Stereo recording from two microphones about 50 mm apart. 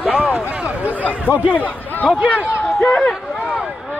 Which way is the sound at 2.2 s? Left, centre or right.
Right.